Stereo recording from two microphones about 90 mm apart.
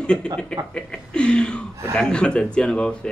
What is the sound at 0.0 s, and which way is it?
A man's voice, 10° left (ahead or behind).